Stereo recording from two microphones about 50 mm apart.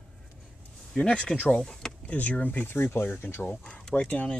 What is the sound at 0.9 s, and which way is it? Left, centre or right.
Speech, centre.